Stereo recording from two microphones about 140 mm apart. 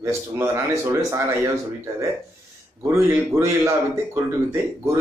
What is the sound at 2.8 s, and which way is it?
Speech, 20° right (ahead or behind).